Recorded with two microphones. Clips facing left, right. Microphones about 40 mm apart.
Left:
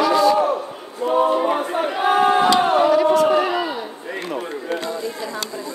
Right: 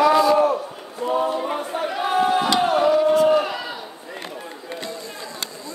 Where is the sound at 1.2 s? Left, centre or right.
Left.